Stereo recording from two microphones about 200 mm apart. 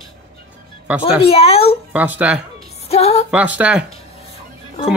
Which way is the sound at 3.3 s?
5° right (ahead or behind).